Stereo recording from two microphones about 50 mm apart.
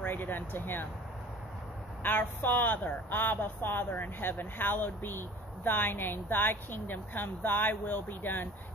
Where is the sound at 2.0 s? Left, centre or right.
Left.